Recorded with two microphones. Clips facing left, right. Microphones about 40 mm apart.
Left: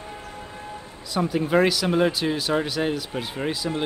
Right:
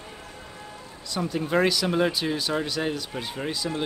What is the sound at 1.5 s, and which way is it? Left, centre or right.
Speech, centre.